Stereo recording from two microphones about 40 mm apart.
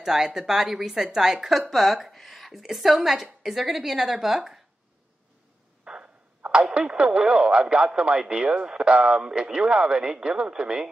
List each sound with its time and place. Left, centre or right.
0.0 s a woman's voice: centre
5.9 s a sound: centre
6.4 s speech: right